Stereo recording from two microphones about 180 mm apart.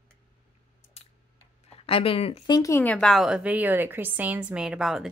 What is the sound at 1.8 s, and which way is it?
Speech, 30° left (ahead or behind).